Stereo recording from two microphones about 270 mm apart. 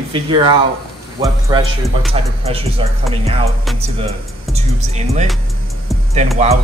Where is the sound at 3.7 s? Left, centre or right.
Right.